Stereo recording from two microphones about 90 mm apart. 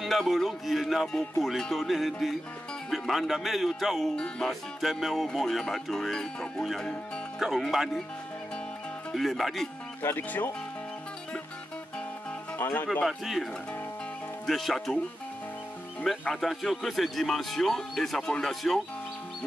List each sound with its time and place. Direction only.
0.0 s speech: centre (ahead or behind)
9.1 s speech: centre (ahead or behind)
10.0 s speech: 20° left (ahead or behind)
12.5 s music: 25° left (ahead or behind)
13.0 s speech: centre (ahead or behind)
16.0 s speech: 5° left (ahead or behind)